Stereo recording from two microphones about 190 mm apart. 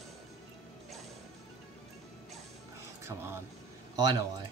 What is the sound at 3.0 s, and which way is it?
Speech, 10° right (ahead or behind).